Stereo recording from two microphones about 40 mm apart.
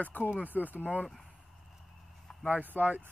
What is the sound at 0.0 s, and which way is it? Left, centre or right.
Speech, left.